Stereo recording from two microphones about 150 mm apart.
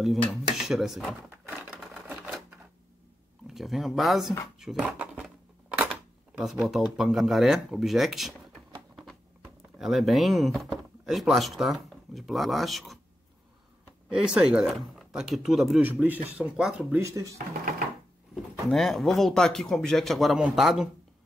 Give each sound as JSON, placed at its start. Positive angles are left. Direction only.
{"t": 0.3, "sound": "speech", "side_deg": -5}
{"t": 1.5, "sound": "sewing machine", "side_deg": 0}
{"t": 3.4, "sound": "speech", "side_deg": 0}
{"t": 4.6, "sound": "a sound", "side_deg": 0}
{"t": 5.9, "sound": "speech", "side_deg": 0}
{"t": 9.6, "sound": "speech", "side_deg": 0}
{"t": 14.0, "sound": "speech", "side_deg": -5}
{"t": 17.0, "sound": "speech", "side_deg": -20}
{"t": 18.7, "sound": "speech", "side_deg": 0}